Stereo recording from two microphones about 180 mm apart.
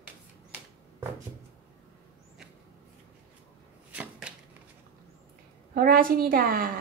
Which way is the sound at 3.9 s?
5° right (ahead or behind).